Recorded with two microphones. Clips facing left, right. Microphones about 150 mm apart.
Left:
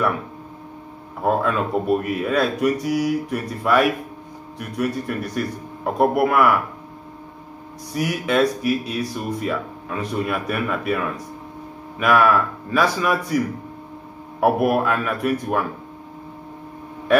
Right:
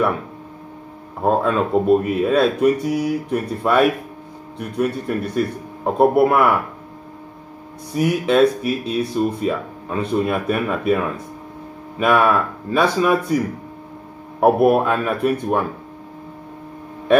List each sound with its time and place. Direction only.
1.2 s speech: 25° right (ahead or behind)
7.9 s speech: 25° right (ahead or behind)
12.0 s speech: 25° right (ahead or behind)
14.4 s speech: 25° right (ahead or behind)